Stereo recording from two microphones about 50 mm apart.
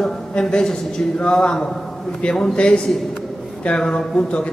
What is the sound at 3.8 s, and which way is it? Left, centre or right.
Speech, centre.